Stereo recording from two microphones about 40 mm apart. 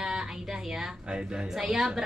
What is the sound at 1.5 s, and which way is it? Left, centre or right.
Speech, centre.